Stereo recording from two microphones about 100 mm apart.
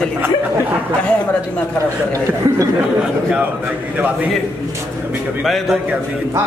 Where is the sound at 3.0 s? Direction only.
15° right (ahead or behind).